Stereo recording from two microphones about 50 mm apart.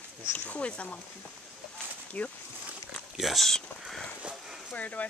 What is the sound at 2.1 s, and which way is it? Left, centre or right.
Speech, left.